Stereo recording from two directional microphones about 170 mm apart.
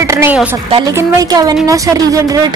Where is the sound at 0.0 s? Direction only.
15° right (ahead or behind).